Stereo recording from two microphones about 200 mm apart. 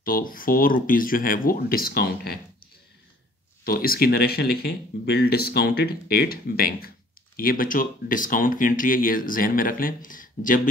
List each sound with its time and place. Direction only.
0.0 s speech: 45° left (ahead or behind)
3.6 s speech: 50° left (ahead or behind)